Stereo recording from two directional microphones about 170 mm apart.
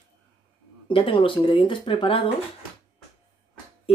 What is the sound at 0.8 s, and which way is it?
Speech, 30° left (ahead or behind).